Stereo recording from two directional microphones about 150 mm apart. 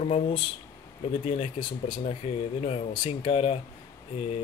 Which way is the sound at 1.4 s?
35° left (ahead or behind).